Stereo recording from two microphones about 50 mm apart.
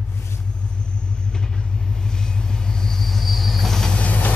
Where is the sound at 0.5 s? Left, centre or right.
Centre.